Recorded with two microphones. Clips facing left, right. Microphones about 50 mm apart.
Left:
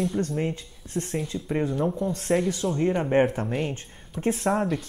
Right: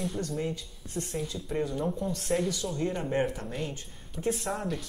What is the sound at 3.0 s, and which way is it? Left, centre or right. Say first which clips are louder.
Speech: left 8 dB; left.